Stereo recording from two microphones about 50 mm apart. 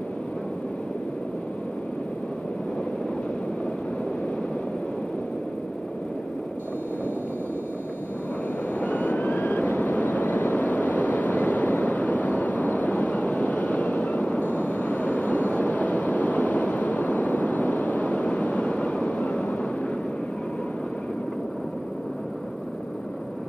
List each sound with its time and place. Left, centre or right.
8.7 s vehicle: left